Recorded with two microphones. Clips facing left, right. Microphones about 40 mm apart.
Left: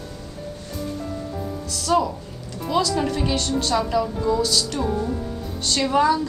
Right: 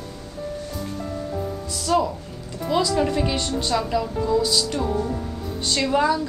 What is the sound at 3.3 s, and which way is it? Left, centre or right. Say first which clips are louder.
Speech: left 1 dB; centre.